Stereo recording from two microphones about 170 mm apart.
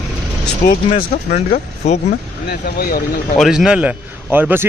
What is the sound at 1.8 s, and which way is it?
Speech, 40° left (ahead or behind).